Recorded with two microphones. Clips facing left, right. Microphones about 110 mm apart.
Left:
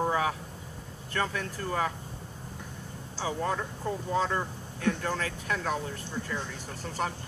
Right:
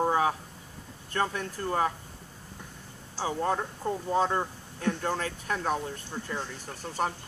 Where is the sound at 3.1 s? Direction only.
35° right (ahead or behind).